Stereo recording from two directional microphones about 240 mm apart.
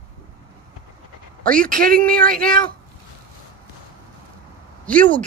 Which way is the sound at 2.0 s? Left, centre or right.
Centre.